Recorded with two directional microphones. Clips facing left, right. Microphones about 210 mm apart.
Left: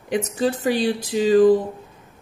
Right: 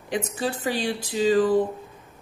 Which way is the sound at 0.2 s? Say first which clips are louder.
Left 6 dB; 40° left (ahead or behind).